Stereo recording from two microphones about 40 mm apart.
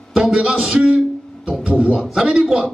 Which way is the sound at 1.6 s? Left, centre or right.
Right.